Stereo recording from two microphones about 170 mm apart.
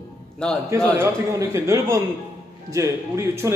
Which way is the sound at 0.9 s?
15° right (ahead or behind).